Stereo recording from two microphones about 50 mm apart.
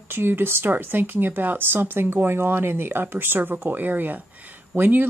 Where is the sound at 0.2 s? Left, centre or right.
Right.